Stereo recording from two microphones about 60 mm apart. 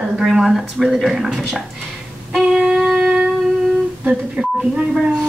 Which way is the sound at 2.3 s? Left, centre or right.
Centre.